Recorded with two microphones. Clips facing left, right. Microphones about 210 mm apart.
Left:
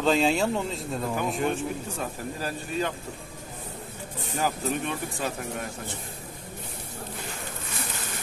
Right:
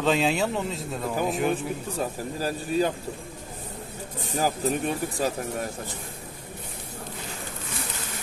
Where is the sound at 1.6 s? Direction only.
35° right (ahead or behind).